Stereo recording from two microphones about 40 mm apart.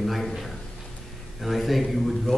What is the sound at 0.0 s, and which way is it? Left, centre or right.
A man's voice, centre.